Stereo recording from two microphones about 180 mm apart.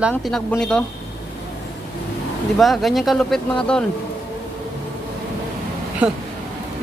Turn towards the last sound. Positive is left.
turn(degrees=-5)  # may be behind; listen again after turning